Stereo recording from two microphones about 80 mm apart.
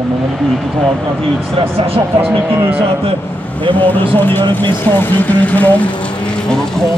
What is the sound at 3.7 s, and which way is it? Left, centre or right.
Speech, left.